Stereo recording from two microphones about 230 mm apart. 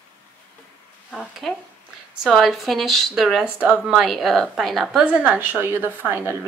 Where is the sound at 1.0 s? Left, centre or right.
Centre.